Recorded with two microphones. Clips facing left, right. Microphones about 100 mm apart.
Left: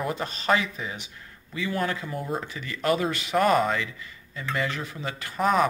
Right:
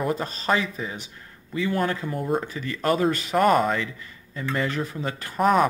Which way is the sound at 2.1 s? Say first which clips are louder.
Right 5 dB; centre (ahead or behind).